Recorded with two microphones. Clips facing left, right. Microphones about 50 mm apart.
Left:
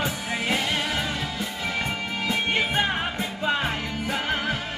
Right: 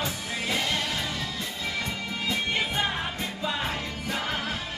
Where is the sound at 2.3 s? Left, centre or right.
Left.